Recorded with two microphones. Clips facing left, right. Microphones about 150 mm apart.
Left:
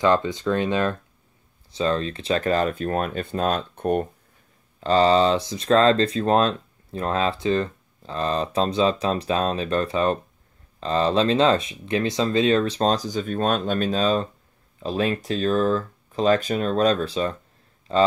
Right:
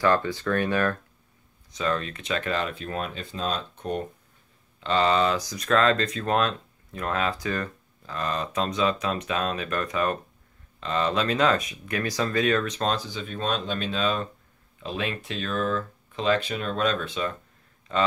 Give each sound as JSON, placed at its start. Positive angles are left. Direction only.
{"t": 0.0, "sound": "speech", "side_deg": 20}
{"t": 4.7, "sound": "speech", "side_deg": 35}